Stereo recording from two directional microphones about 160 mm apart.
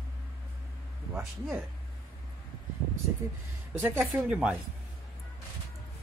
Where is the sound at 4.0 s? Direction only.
Centre (ahead or behind).